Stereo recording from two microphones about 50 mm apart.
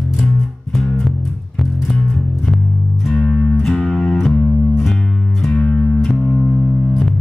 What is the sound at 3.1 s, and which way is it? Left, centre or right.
Music, centre.